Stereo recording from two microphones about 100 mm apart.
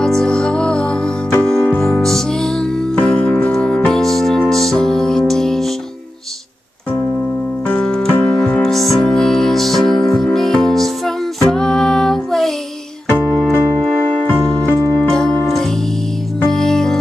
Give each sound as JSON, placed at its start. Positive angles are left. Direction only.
{"t": 0.0, "sound": "music", "side_deg": 5}
{"t": 7.6, "sound": "music", "side_deg": 10}
{"t": 13.1, "sound": "keyboard", "side_deg": 20}
{"t": 14.4, "sound": "music", "side_deg": 10}